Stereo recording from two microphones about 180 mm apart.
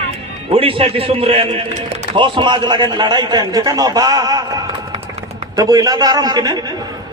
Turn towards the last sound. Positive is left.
turn(degrees=-20)  # may be behind; listen again after turning